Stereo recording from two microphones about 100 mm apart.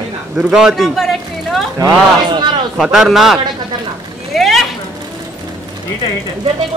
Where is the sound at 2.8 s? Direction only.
Centre (ahead or behind).